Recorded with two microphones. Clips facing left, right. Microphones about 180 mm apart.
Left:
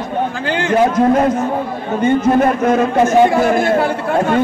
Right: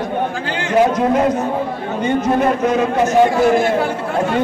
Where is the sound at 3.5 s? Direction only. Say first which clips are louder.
Left 1 dB; 60° left (ahead or behind).